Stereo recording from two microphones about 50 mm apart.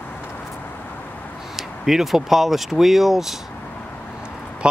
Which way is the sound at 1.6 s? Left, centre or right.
Centre.